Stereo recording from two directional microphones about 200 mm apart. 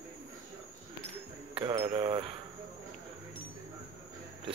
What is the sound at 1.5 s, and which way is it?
Speech, 25° right (ahead or behind).